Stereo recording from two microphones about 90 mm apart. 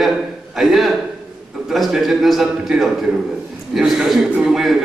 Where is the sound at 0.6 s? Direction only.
5° right (ahead or behind).